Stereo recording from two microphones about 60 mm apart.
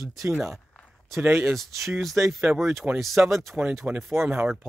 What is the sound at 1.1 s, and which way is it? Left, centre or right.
Speech, right.